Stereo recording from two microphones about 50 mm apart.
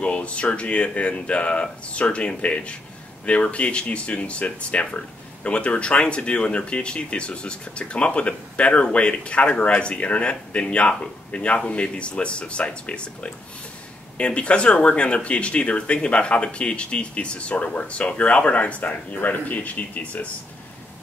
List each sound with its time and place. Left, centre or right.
0.0 s speech: left